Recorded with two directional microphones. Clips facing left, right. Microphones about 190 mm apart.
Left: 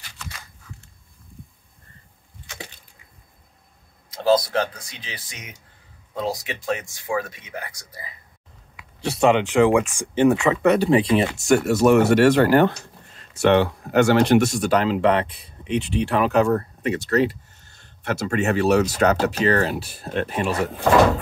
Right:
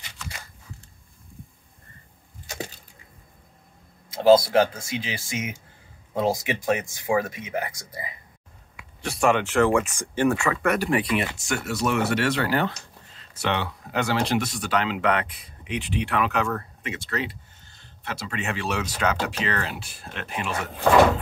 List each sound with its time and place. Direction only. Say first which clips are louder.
2.4 s a sound: right 5 dB; 40° right (ahead or behind)
4.1 s speech: right 3 dB; 25° right (ahead or behind)
9.2 s speech: left 4 dB; 15° left (ahead or behind)
11.4 s speech: left 10 dB; 45° left (ahead or behind)